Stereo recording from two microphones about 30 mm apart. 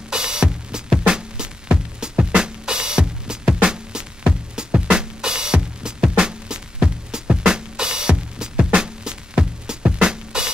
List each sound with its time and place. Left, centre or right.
0.1 s music: right
4.2 s music: right